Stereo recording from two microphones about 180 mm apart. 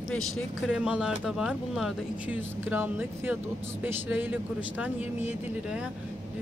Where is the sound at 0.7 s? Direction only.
5° right (ahead or behind).